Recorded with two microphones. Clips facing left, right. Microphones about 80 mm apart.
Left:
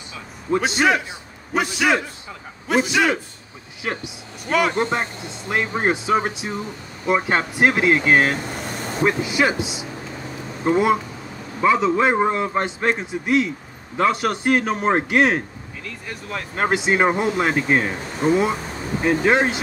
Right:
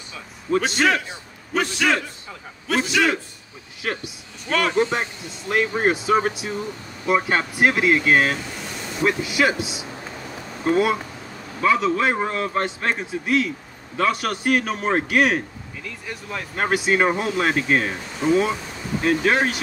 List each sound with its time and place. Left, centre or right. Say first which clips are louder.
0.5 s a man's voice: left 1 dB; centre
4.5 s speech: left 2 dB; centre
4.7 s speech: right 1 dB; left
5.5 s a man's voice: right 1 dB; left
8.3 s vehicle: left 2 dB; left
9.0 s a man's voice: left 1 dB; left
15.8 s speech: even; centre
16.5 s a man's voice: left 1 dB; left
18.2 s speech: left 1 dB; left
19.0 s speech: left 2 dB; centre